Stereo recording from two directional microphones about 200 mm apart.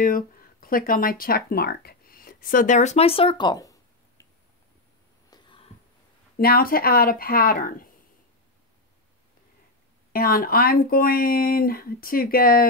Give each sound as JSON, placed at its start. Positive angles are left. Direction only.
{"t": 0.0, "sound": "speech", "side_deg": 45}
{"t": 5.3, "sound": "a sound", "side_deg": 25}
{"t": 6.3, "sound": "speech", "side_deg": 45}
{"t": 10.1, "sound": "speech", "side_deg": 50}